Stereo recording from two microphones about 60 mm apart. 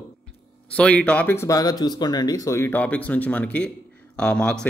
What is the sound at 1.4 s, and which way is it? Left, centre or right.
Speech, left.